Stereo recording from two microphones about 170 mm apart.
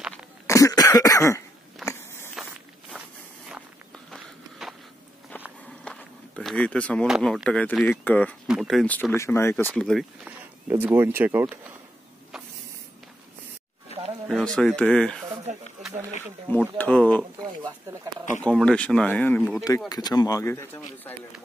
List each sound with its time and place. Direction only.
0.0 s cough: 5° right (ahead or behind)
0.5 s cough: 20° left (ahead or behind)
1.9 s walk: 15° left (ahead or behind)
3.9 s a sound: centre (ahead or behind)
5.9 s speech: 5° left (ahead or behind)
9.8 s speech: 5° left (ahead or behind)
10.2 s speech: 10° right (ahead or behind)
13.9 s a sound: 35° left (ahead or behind)
14.4 s speech: 5° left (ahead or behind)
16.7 s speech: 10° left (ahead or behind)
18.4 s speech: 5° left (ahead or behind)
19.9 s speech: 25° left (ahead or behind)